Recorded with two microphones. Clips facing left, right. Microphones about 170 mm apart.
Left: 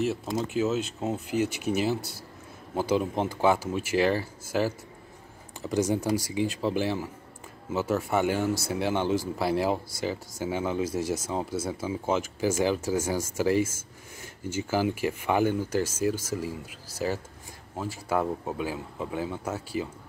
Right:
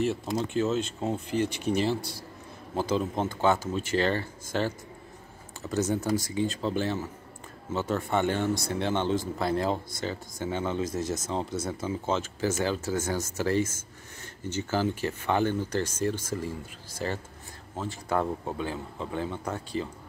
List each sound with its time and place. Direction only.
0.0 s speech: centre (ahead or behind)
17.7 s speech: 10° left (ahead or behind)